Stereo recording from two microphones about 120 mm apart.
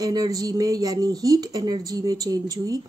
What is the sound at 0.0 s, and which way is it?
Speech, 30° right (ahead or behind).